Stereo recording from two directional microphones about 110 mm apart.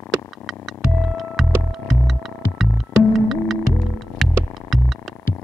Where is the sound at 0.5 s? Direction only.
Centre (ahead or behind).